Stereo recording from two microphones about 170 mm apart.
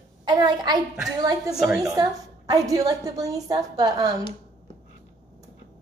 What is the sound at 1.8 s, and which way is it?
A woman's voice, 20° right (ahead or behind).